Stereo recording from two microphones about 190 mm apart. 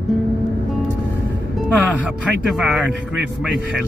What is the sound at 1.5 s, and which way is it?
Music, 5° right (ahead or behind).